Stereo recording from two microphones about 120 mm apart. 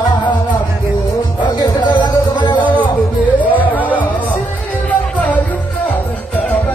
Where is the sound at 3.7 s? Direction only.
15° left (ahead or behind).